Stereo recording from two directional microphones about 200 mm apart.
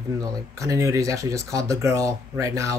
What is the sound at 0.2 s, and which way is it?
Speech, 15° right (ahead or behind).